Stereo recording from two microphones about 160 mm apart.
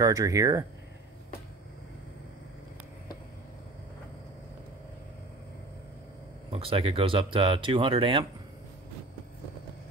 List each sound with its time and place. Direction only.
0.0 s speech: 20° right (ahead or behind)
6.5 s speech: 35° right (ahead or behind)